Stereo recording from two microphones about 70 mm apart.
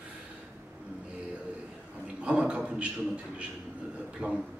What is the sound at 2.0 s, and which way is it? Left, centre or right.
Speech, centre.